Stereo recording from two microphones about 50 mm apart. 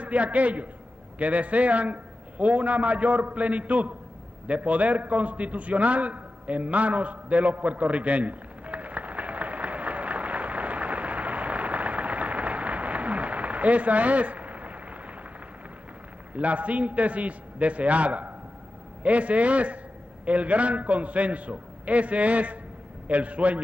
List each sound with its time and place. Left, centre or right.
0.0 s a man's voice: right
4.5 s a sound: right
16.3 s a man's voice: right